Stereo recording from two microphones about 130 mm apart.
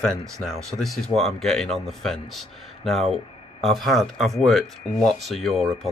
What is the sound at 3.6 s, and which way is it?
Speech, centre (ahead or behind).